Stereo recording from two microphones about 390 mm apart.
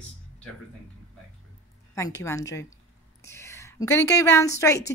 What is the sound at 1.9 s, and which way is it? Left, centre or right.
A woman's voice, centre.